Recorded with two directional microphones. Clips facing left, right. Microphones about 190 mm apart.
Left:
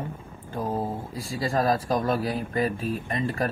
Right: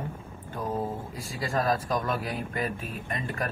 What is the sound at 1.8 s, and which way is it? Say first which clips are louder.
Speech: left 5 dB; 30° left (ahead or behind).